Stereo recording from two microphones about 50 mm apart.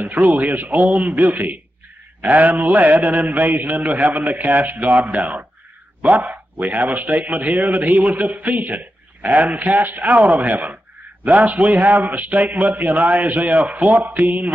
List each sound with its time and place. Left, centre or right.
0.0 s speech: right